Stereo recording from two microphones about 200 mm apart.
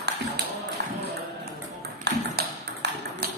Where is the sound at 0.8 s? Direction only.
60° right (ahead or behind).